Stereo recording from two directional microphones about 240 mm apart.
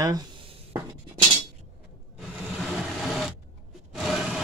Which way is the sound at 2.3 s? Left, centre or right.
Centre.